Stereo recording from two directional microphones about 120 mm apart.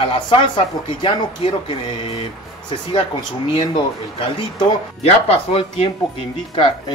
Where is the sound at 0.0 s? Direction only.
45° left (ahead or behind).